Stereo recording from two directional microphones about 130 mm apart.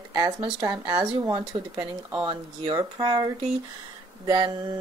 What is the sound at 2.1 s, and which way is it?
A woman's voice, 30° right (ahead or behind).